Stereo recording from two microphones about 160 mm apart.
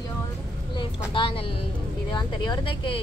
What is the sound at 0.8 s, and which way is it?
Speech, 30° left (ahead or behind).